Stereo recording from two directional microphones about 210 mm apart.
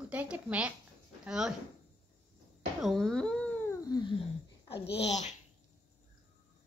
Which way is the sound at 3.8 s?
20° left (ahead or behind).